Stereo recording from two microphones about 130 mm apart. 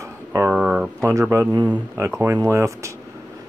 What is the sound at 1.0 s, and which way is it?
A man's voice, 20° right (ahead or behind).